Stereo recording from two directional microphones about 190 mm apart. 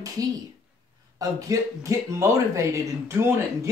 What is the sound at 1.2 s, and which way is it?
Speech, 15° right (ahead or behind).